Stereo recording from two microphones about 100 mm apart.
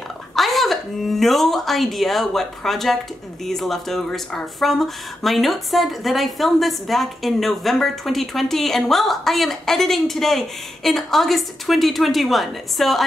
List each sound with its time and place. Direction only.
0.4 s speech: centre (ahead or behind)